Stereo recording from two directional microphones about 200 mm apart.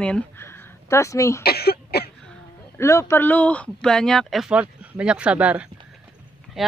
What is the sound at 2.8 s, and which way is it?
Speech, 15° left (ahead or behind).